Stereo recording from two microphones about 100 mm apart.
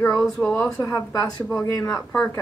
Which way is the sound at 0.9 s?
35° left (ahead or behind).